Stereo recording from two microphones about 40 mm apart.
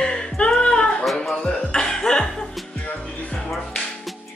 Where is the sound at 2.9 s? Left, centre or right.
Left.